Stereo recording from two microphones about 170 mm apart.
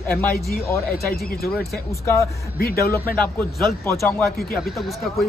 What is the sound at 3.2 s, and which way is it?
Speech, 5° left (ahead or behind).